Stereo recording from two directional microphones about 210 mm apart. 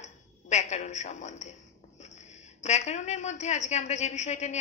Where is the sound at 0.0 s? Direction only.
35° left (ahead or behind).